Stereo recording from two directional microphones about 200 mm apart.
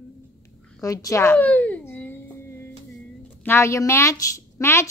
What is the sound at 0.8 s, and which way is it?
A child's voice, 15° left (ahead or behind).